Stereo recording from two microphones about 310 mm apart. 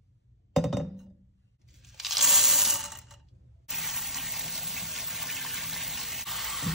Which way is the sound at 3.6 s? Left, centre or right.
Centre.